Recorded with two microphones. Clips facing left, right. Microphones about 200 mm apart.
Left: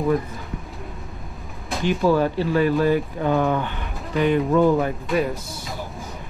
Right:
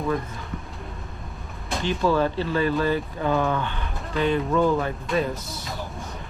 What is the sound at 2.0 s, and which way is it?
Speech, 10° left (ahead or behind).